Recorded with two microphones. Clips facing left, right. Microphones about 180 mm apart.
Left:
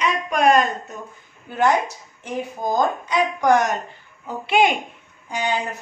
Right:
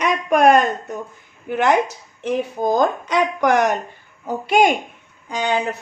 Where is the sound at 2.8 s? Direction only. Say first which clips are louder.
Right 1 dB; 70° right (ahead or behind).